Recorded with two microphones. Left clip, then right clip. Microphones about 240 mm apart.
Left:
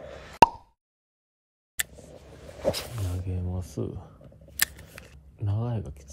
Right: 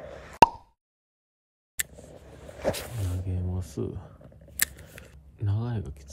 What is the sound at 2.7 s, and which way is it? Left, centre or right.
Speech, centre.